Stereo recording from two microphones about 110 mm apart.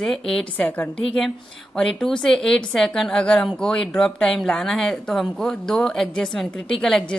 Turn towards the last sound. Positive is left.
turn(degrees=5)  # may be behind; listen again after turning